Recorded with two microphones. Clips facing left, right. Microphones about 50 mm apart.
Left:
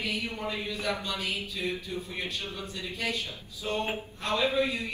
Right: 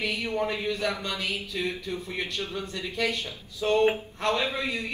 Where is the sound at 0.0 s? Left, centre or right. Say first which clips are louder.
Right 5 dB; right.